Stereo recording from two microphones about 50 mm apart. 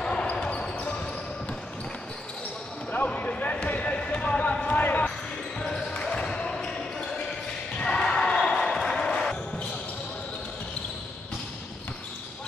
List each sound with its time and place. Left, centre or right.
0.0 s basketball bounce: left
2.9 s basketball bounce: left
5.6 s basketball bounce: centre